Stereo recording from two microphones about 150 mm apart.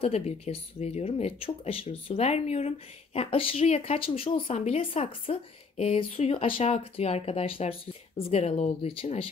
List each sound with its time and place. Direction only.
0.0 s speech: 40° left (ahead or behind)